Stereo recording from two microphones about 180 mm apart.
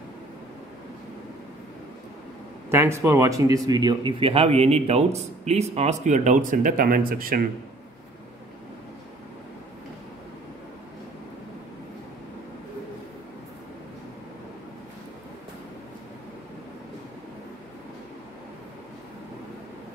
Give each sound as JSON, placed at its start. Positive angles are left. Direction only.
{"t": 2.7, "sound": "speech", "side_deg": -15}